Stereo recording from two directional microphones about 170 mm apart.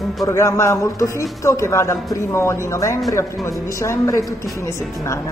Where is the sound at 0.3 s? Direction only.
15° left (ahead or behind).